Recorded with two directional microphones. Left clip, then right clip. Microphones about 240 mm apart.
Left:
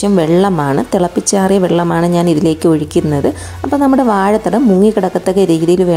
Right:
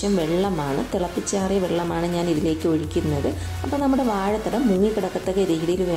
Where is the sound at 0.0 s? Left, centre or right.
Left.